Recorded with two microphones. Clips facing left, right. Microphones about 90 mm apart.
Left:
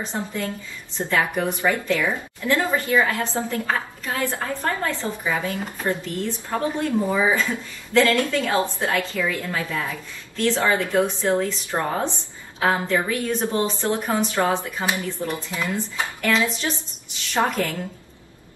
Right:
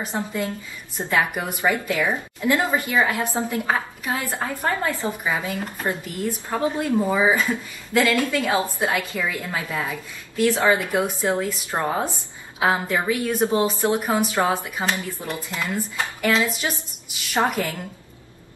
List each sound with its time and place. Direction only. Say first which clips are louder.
0.0 s a woman's voice: right 1 dB; 15° right (ahead or behind)